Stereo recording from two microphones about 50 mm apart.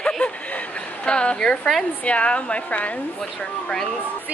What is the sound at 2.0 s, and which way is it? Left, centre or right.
Speech, left.